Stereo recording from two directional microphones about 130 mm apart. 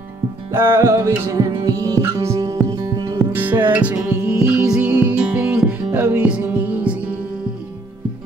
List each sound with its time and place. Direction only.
0.5 s music: 20° right (ahead or behind)
3.3 s music: 15° right (ahead or behind)